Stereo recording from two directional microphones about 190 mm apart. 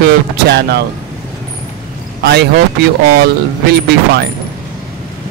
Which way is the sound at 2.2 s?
60° right (ahead or behind).